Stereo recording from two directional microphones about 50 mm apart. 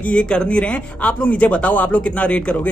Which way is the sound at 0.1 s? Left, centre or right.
Centre.